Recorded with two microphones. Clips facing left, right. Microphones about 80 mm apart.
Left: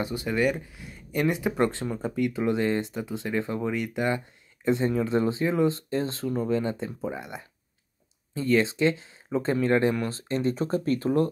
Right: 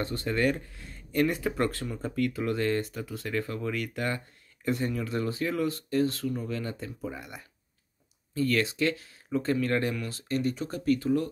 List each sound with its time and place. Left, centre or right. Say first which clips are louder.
0.0 s speech: left 2 dB; centre; by 11.2 s left